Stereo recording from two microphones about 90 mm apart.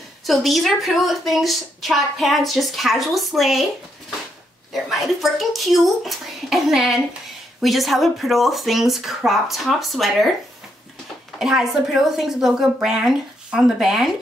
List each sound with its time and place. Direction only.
0.2 s a woman's voice: centre (ahead or behind)
4.8 s a woman's voice: 5° right (ahead or behind)
11.3 s a woman's voice: 5° right (ahead or behind)